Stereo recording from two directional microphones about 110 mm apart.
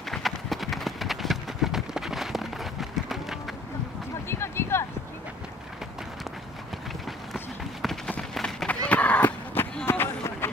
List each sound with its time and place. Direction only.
0.1 s clip-clop: centre (ahead or behind)
4.3 s a sound: 20° left (ahead or behind)
8.1 s run: 5° left (ahead or behind); by 10.5 s 20° left (ahead or behind)